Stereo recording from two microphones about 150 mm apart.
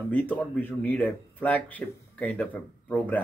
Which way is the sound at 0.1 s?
10° left (ahead or behind).